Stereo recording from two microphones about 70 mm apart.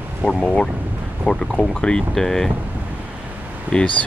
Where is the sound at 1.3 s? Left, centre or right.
Centre.